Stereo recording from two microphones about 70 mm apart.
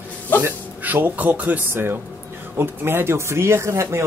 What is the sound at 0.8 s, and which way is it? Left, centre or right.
Speech, right.